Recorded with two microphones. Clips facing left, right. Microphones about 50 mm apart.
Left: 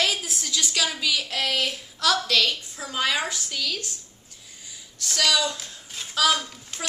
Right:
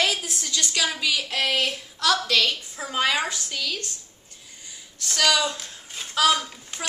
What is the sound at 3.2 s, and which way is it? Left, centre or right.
Speech, centre.